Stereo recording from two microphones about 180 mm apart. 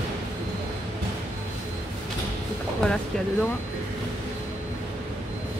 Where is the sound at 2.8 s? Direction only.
5° left (ahead or behind).